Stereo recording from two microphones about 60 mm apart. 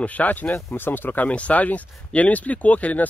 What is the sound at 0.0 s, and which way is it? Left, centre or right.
Speech, left.